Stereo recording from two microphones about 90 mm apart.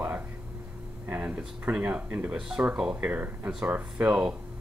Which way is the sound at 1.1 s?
15° right (ahead or behind).